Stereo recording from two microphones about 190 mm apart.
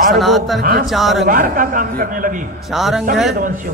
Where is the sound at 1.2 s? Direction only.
45° right (ahead or behind).